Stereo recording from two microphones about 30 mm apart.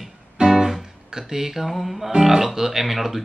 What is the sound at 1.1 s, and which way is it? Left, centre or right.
Speech, centre.